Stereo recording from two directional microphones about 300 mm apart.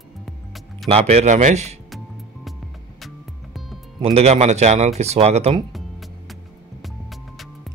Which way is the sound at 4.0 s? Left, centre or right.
Centre.